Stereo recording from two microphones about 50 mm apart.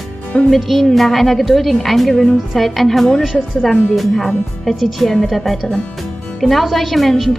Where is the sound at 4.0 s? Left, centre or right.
Centre.